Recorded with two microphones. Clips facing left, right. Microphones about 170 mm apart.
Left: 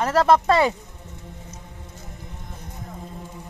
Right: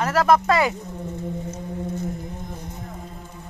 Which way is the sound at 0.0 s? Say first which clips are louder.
Left 1 dB; 30° left (ahead or behind).